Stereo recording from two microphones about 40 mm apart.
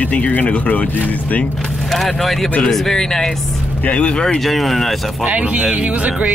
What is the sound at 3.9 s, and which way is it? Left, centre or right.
Speech, left.